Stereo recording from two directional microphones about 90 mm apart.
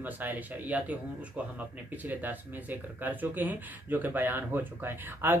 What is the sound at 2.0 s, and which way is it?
Speech, 20° right (ahead or behind).